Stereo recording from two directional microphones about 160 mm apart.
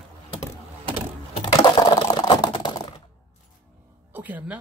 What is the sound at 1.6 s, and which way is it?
Computer keyboard, 25° left (ahead or behind).